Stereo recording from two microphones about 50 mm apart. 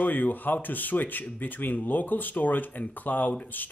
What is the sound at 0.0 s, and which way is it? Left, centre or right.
Speech, left.